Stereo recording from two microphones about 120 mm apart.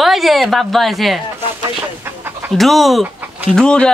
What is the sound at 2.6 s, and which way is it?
A man's voice, centre (ahead or behind).